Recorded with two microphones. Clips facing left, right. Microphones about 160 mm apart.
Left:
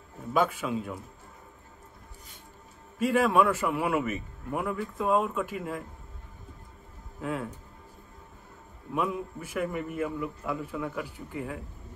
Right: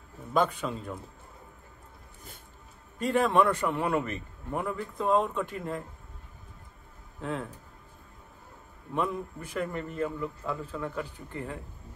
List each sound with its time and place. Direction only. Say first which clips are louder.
0.3 s a man's voice: left 1 dB; 5° left (ahead or behind)
3.0 s a man's voice: left 1 dB; 5° left (ahead or behind)
7.2 s speech: left 1 dB; 5° left (ahead or behind)
8.9 s a man's voice: left 1 dB; 5° left (ahead or behind)